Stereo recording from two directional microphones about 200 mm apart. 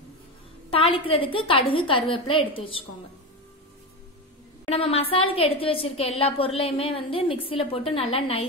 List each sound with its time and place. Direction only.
0.7 s a woman's voice: 25° left (ahead or behind)
4.6 s a woman's voice: 30° left (ahead or behind)